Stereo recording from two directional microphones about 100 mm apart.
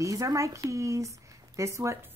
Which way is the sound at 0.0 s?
35° right (ahead or behind).